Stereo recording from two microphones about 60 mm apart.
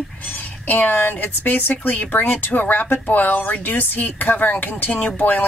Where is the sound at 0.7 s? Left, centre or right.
Left.